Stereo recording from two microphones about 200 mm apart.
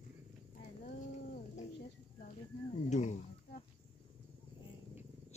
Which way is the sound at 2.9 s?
35° left (ahead or behind).